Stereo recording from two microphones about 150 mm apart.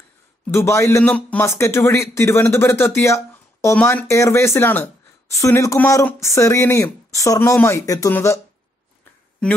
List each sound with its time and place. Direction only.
0.5 s speech: 20° left (ahead or behind)